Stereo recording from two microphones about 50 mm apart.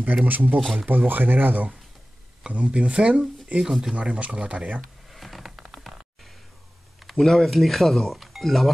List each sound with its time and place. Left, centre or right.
0.0 s speech: right
0.6 s speech: centre
0.8 s speech: right
2.4 s speech: right
3.5 s speech: centre
3.9 s speech: right
5.1 s a sound: centre
7.1 s speech: centre